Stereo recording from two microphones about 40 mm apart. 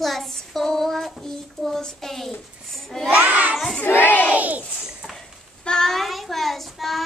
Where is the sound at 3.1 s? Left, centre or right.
Right.